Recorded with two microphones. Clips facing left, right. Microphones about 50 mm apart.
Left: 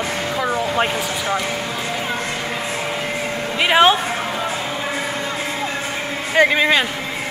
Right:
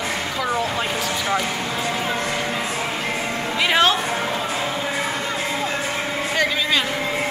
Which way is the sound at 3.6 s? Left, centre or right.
Left.